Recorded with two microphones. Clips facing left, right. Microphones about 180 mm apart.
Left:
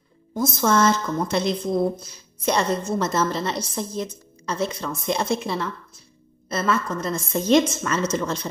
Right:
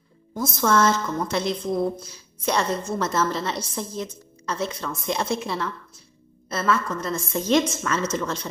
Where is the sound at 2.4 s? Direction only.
15° left (ahead or behind).